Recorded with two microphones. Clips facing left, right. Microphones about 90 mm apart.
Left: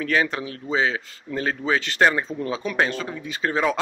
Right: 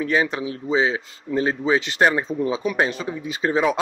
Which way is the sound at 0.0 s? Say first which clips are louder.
Right 2 dB; 20° right (ahead or behind).